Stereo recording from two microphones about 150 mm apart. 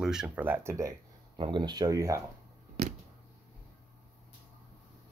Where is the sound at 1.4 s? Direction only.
30° right (ahead or behind).